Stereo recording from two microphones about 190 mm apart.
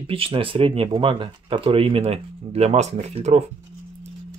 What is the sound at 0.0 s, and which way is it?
Speech, 30° right (ahead or behind).